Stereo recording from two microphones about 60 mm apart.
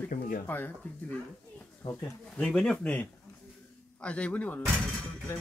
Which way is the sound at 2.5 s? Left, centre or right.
Centre.